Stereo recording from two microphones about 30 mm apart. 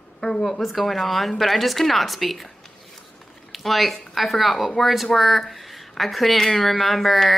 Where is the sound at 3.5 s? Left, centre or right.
Centre.